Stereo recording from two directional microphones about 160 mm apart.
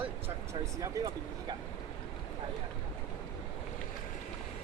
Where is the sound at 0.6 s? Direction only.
25° right (ahead or behind).